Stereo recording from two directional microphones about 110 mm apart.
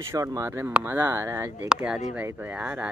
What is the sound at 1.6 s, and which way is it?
Speech, 5° right (ahead or behind).